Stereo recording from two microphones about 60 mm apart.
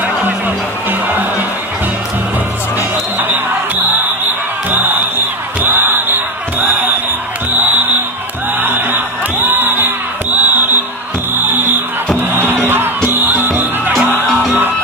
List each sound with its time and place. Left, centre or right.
4.6 s music: right